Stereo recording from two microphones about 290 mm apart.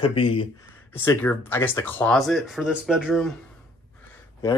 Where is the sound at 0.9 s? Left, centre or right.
Centre.